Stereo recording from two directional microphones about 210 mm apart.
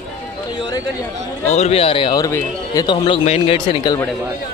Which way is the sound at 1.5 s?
30° left (ahead or behind).